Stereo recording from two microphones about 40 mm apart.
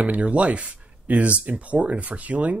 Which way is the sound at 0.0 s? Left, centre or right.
Right.